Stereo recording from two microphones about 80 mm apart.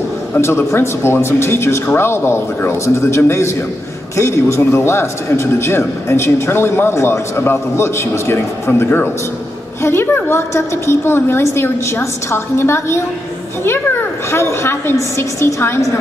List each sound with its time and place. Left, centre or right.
0.4 s a man's voice: left
14.3 s a man's voice: left